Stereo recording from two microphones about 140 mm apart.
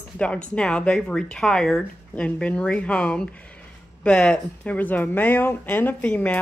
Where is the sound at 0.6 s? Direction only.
5° left (ahead or behind).